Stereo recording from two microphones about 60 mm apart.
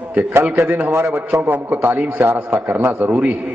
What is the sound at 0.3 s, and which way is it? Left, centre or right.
Speech, right.